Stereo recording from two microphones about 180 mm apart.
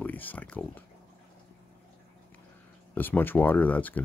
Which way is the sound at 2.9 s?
10° left (ahead or behind).